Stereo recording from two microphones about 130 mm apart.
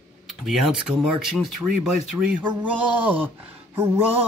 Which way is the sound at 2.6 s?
10° right (ahead or behind).